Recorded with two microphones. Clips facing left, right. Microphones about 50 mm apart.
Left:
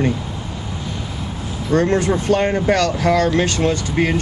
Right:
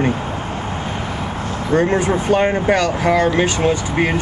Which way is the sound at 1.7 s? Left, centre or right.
Centre.